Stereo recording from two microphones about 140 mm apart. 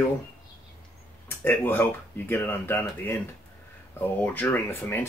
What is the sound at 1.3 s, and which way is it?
Speech, 15° left (ahead or behind).